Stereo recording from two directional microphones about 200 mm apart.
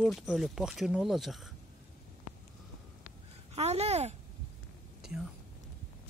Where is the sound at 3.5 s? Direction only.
30° right (ahead or behind).